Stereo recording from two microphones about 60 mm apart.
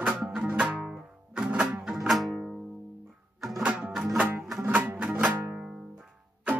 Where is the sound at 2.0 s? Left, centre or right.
Centre.